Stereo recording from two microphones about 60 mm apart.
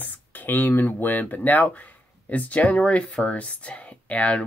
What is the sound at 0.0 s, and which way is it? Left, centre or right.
Speech, left.